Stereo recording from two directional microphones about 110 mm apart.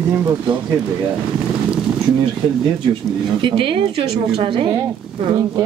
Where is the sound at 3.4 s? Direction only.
50° right (ahead or behind).